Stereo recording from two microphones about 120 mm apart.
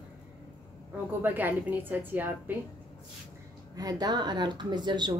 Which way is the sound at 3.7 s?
30° right (ahead or behind).